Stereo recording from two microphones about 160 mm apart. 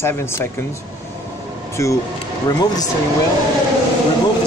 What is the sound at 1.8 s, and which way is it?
Speech, 20° left (ahead or behind).